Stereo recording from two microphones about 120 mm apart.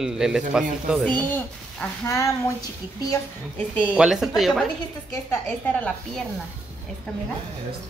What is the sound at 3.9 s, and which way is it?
Speech, 5° right (ahead or behind).